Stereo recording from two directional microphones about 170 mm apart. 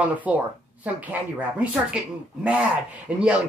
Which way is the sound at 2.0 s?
5° right (ahead or behind).